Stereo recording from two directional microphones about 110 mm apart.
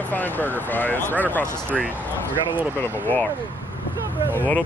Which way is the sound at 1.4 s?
15° right (ahead or behind).